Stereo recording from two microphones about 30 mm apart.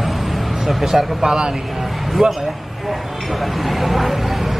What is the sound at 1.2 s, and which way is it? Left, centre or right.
Speech, right.